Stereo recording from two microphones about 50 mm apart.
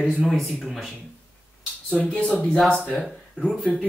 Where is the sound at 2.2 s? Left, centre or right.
Left.